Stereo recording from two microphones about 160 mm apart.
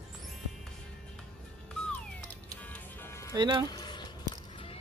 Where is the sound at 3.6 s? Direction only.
25° left (ahead or behind).